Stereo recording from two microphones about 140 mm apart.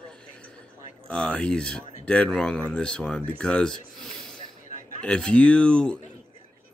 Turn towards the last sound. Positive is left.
turn(degrees=10)  # may be behind; listen again after turning